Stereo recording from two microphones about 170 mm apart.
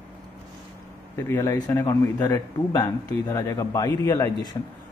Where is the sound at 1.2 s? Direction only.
15° left (ahead or behind).